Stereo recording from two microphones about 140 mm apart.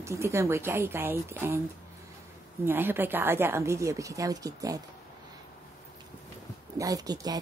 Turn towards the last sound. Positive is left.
turn(degrees=-25)  # may be behind; listen again after turning